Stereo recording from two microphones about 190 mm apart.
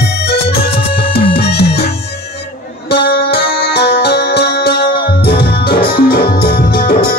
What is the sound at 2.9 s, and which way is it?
Music, 55° left (ahead or behind).